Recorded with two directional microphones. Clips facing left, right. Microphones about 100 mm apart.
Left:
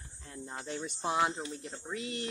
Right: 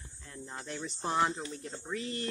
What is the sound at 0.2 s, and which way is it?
Cricket, 30° left (ahead or behind).